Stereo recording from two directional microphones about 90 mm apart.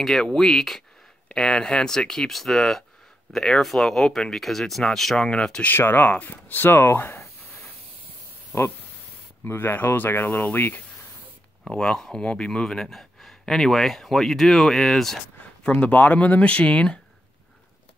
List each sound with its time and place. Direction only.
0.0 s speech: 5° left (ahead or behind)
5.7 s speech: 25° left (ahead or behind)
8.5 s speech: 30° left (ahead or behind)
11.7 s speech: 10° left (ahead or behind)
15.7 s speech: 20° left (ahead or behind)